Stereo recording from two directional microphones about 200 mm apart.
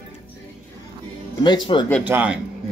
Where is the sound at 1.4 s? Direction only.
25° left (ahead or behind).